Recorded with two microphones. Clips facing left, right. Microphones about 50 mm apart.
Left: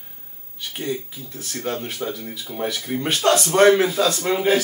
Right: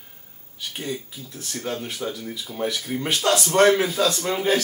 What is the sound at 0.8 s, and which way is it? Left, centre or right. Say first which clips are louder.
A man's voice: left 4 dB; centre.